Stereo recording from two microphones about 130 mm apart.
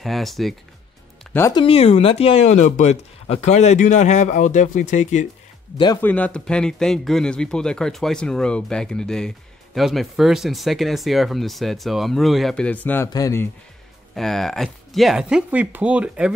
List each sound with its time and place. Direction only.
0.0 s a man's voice: centre (ahead or behind)
1.5 s speech: 45° left (ahead or behind); by 5.3 s 65° left (ahead or behind)
5.9 s a man's voice: 10° left (ahead or behind)
14.1 s a man's voice: centre (ahead or behind)